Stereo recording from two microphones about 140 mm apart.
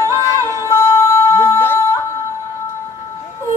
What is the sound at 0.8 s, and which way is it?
Music, 20° left (ahead or behind).